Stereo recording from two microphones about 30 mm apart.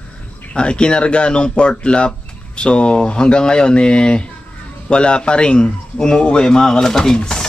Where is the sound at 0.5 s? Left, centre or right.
Left; by 7.1 s centre.